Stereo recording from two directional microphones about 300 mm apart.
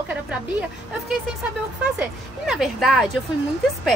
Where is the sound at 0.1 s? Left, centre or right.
Centre.